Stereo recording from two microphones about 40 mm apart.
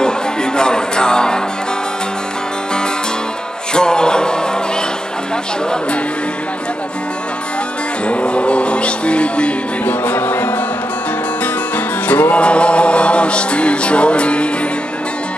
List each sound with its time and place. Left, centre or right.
0.0 s music: left
3.7 s music: left
8.1 s music: left
9.8 s music: left
12.1 s music: left
12.4 s music: left